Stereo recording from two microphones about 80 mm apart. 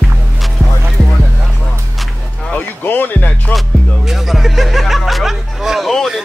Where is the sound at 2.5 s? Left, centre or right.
Left.